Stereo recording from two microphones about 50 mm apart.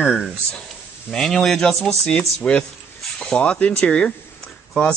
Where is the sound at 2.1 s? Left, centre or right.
Left.